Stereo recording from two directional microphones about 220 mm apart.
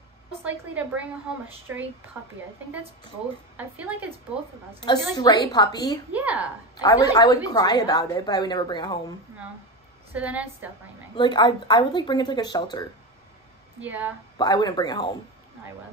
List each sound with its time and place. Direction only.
0.4 s a woman's voice: 5° right (ahead or behind)
4.7 s a woman's voice: 20° left (ahead or behind)
6.1 s a woman's voice: 5° right (ahead or behind)
6.8 s a woman's voice: 15° left (ahead or behind)
10.1 s a woman's voice: 5° right (ahead or behind)
11.1 s speech: 20° left (ahead or behind)
13.7 s a woman's voice: 5° right (ahead or behind)
14.4 s speech: 20° left (ahead or behind)